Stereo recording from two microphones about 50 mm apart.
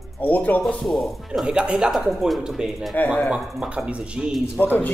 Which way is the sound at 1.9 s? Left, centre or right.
Centre.